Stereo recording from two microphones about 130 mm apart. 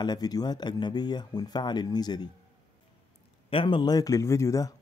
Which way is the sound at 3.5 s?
40° left (ahead or behind).